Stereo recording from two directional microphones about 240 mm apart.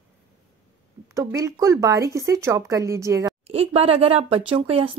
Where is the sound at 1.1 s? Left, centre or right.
Centre.